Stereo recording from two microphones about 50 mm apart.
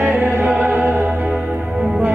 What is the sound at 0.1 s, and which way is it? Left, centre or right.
Music, right.